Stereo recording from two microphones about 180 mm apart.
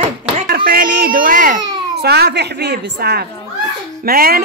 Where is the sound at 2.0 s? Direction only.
65° right (ahead or behind).